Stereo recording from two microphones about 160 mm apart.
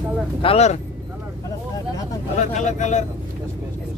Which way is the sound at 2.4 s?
50° left (ahead or behind).